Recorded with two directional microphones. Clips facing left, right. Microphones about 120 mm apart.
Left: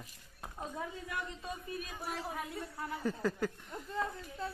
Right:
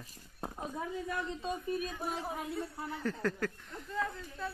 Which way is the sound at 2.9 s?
10° left (ahead or behind).